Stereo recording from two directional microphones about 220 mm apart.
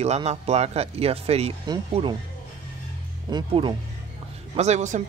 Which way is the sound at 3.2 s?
20° right (ahead or behind).